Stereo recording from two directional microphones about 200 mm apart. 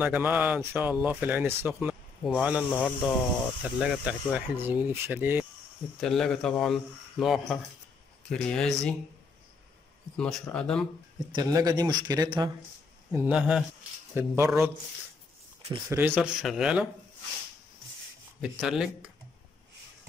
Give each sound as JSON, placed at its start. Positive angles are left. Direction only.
{"t": 0.0, "sound": "speech", "side_deg": -10}
{"t": 5.9, "sound": "speech", "side_deg": 0}
{"t": 10.1, "sound": "speech", "side_deg": 5}
{"t": 11.3, "sound": "a man's voice", "side_deg": -20}
{"t": 13.1, "sound": "speech", "side_deg": -10}
{"t": 15.9, "sound": "speech", "side_deg": -10}
{"t": 18.4, "sound": "speech", "side_deg": -5}